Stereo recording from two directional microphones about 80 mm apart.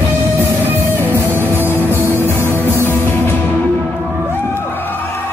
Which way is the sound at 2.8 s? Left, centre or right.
Left.